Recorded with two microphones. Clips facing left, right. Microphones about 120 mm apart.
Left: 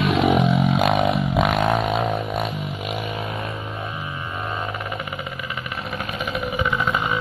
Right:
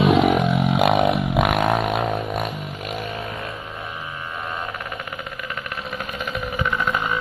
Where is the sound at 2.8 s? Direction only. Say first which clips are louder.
Even; 5° left (ahead or behind).